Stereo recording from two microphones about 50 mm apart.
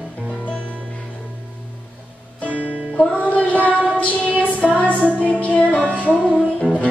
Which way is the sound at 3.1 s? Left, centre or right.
Left.